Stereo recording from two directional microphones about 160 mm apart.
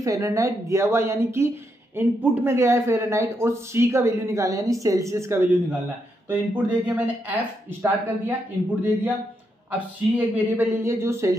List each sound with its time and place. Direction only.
0.0 s a man's voice: 20° right (ahead or behind)
9.7 s a man's voice: 10° right (ahead or behind)